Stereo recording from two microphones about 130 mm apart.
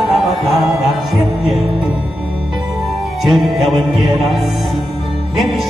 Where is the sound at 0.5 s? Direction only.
Centre (ahead or behind).